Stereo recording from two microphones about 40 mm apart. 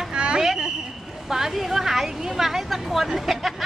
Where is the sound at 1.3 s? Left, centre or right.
Centre.